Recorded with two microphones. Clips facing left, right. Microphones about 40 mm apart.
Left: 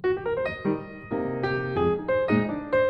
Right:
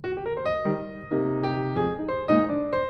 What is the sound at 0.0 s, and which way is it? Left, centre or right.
Music, centre.